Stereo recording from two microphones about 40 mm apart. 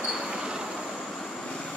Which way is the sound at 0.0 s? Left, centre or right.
Centre.